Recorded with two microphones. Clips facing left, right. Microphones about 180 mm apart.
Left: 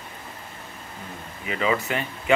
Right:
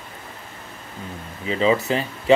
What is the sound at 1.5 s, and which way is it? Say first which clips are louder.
Speech: right 5 dB; 25° right (ahead or behind).